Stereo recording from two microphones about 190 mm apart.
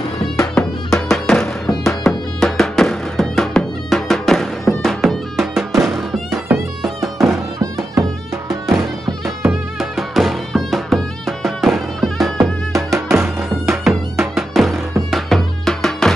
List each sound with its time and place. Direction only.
0.6 s music: centre (ahead or behind)
7.6 s music: 20° right (ahead or behind)
8.6 s music: centre (ahead or behind)